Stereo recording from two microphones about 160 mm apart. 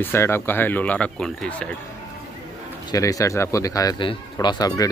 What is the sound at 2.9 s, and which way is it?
Speech, 20° left (ahead or behind).